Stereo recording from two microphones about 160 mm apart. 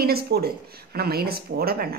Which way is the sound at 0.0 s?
75° right (ahead or behind).